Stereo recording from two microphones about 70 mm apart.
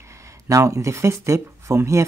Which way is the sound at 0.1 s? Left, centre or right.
Right.